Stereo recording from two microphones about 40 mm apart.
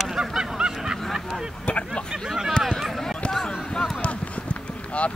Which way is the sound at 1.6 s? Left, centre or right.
Left.